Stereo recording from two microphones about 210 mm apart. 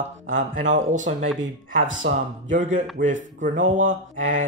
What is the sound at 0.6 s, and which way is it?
Speech, 35° right (ahead or behind).